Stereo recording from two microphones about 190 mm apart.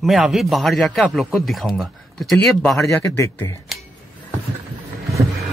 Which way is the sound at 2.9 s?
15° left (ahead or behind).